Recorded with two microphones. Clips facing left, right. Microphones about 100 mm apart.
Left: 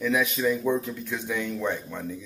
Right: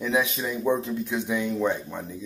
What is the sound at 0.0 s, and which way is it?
Music, 25° right (ahead or behind).